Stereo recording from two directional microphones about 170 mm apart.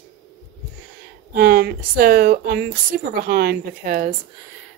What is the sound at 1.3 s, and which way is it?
Speech, 65° right (ahead or behind).